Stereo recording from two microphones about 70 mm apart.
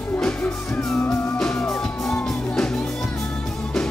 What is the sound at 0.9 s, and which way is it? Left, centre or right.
Music, left.